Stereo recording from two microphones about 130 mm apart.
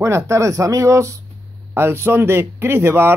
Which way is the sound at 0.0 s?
20° right (ahead or behind).